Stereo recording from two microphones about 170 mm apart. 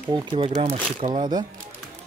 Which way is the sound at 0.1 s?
30° right (ahead or behind).